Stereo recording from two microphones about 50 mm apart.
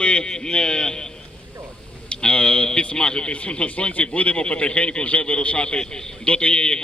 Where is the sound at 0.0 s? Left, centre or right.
Centre.